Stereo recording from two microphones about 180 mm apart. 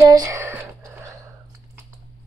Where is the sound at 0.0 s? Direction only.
20° right (ahead or behind).